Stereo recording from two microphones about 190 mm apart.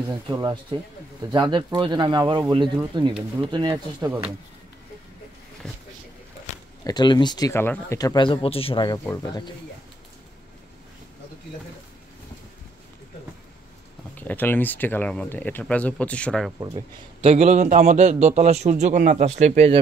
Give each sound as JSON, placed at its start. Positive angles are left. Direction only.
{"t": 0.1, "sound": "speech", "side_deg": -20}
{"t": 6.8, "sound": "speech", "side_deg": 20}
{"t": 14.1, "sound": "speech", "side_deg": 10}
{"t": 16.5, "sound": "a man's voice", "side_deg": -25}